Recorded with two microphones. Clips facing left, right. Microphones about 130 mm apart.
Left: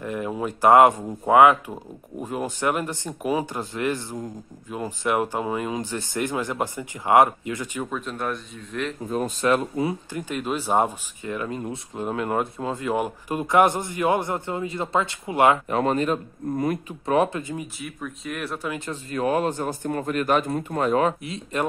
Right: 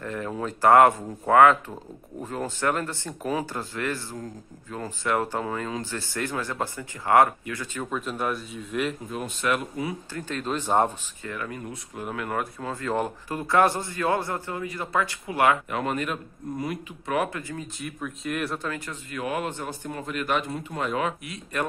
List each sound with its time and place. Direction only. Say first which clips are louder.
0.0 s speech: left 3 dB; 15° left (ahead or behind)
7.8 s speech: right 3 dB; centre (ahead or behind)
9.1 s speech: left 9 dB; 40° left (ahead or behind)
10.1 s speech: left 2 dB; 10° left (ahead or behind)
11.2 s speech: left 5 dB; 20° left (ahead or behind)
17.7 s speech: even; centre (ahead or behind)
18.9 s speech: left 7 dB; 35° left (ahead or behind)
21.3 s speech: left 3 dB; 25° left (ahead or behind)